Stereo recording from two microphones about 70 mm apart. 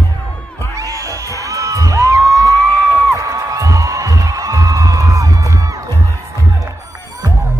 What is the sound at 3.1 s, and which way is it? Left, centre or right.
Music, right.